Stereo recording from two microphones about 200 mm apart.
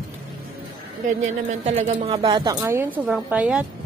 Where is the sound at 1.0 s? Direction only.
35° right (ahead or behind); by 3.6 s 5° right (ahead or behind).